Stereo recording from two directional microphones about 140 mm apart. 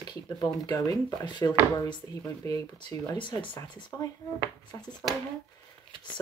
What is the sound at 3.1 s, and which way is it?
Speech, 35° left (ahead or behind).